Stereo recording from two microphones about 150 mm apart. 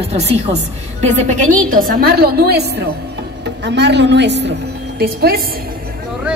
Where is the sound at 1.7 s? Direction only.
75° right (ahead or behind); by 2.8 s 90° right.